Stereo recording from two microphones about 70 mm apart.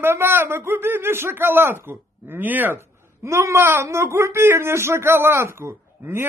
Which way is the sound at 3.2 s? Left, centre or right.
Right.